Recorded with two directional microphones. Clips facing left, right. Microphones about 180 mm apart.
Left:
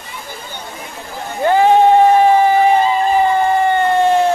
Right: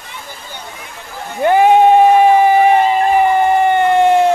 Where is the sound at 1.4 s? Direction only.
15° right (ahead or behind).